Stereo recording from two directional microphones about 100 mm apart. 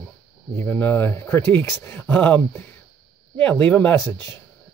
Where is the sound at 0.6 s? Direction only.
20° left (ahead or behind).